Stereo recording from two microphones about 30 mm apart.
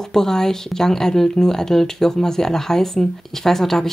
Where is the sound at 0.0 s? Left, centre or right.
Centre.